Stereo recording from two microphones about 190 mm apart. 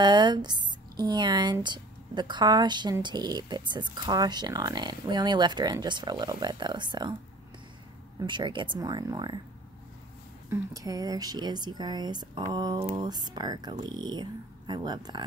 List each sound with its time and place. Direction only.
0.0 s speech: 25° right (ahead or behind)
8.2 s speech: 25° right (ahead or behind)
10.5 s speech: 20° right (ahead or behind)